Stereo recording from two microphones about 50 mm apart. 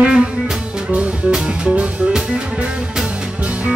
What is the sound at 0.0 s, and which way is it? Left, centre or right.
Music, centre.